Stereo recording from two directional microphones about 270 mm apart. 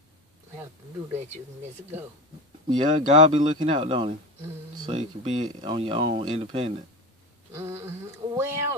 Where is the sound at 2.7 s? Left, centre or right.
Centre.